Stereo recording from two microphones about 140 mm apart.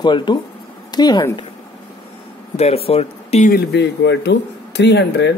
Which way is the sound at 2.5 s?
45° left (ahead or behind).